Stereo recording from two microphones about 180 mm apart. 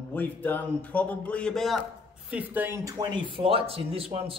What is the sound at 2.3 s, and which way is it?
Speech, 10° right (ahead or behind).